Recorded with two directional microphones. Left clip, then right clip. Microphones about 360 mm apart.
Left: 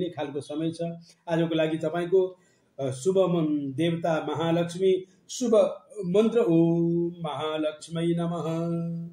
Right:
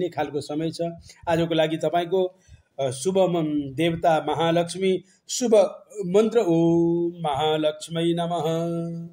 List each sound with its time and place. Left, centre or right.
0.0 s a man's voice: right